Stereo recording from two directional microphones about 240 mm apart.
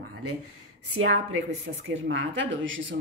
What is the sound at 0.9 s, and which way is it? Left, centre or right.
A woman's voice, right.